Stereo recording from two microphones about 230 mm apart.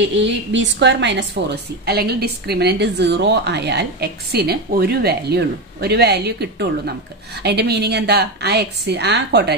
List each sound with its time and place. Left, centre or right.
0.0 s a woman's voice: right